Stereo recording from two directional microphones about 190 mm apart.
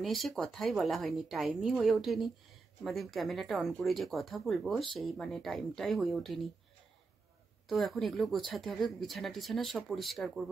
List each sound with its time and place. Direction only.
0.0 s speech: centre (ahead or behind)
7.6 s speech: centre (ahead or behind)